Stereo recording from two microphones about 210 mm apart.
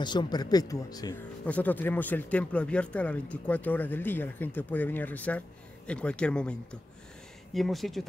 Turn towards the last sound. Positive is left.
turn(degrees=0)  # may be behind; listen again after turning